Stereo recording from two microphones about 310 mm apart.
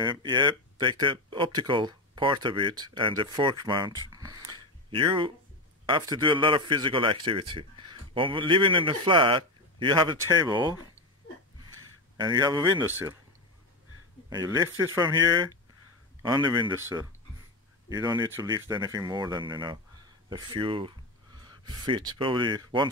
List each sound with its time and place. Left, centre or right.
0.0 s speech: centre
4.1 s a sound: centre
5.9 s speech: centre
12.2 s speech: centre
14.3 s speech: centre